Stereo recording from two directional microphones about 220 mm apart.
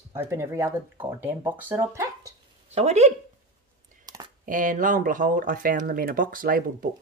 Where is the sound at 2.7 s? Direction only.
30° right (ahead or behind).